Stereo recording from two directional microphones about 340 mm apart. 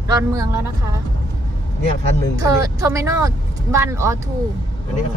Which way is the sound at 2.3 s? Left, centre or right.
Centre.